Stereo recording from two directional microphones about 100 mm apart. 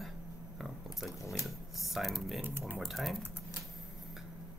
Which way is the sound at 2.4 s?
20° right (ahead or behind).